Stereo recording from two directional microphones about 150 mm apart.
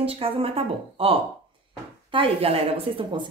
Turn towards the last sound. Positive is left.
turn(degrees=-35)  # may be behind; listen again after turning